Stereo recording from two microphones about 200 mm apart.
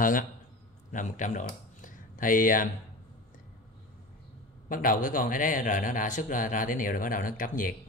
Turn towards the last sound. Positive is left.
turn(degrees=45)  # may be behind; listen again after turning